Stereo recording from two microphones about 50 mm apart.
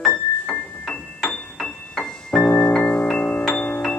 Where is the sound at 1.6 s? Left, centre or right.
Centre.